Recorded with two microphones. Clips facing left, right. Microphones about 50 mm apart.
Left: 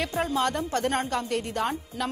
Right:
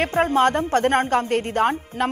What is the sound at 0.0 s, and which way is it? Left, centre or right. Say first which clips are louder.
A woman's voice: right 8 dB; right.